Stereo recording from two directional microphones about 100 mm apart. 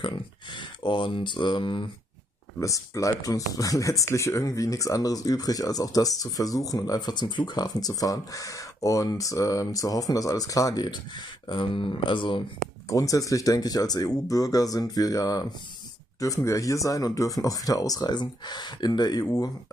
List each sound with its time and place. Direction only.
0.6 s speech: 55° left (ahead or behind)
2.6 s speech: 35° left (ahead or behind)
11.4 s speech: 55° left (ahead or behind)
12.9 s speech: 35° left (ahead or behind)